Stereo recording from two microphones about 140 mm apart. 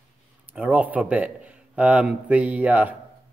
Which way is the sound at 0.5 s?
10° right (ahead or behind).